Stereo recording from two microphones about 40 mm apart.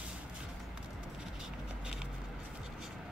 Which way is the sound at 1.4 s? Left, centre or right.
Centre.